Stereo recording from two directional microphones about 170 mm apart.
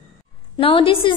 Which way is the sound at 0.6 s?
30° left (ahead or behind).